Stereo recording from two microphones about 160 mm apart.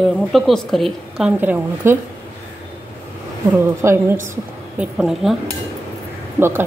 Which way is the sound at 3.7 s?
15° right (ahead or behind).